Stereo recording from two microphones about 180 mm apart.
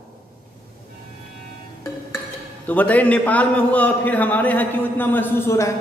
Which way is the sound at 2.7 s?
10° left (ahead or behind).